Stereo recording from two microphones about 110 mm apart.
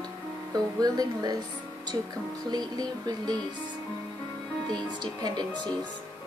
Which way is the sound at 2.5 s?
35° right (ahead or behind).